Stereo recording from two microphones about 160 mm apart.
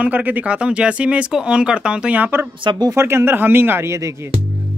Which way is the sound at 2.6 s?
25° right (ahead or behind).